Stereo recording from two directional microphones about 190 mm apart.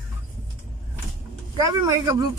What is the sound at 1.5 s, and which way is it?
Speech, 20° right (ahead or behind).